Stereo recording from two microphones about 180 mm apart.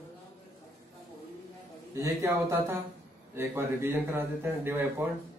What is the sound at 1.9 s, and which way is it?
Speech, 15° right (ahead or behind).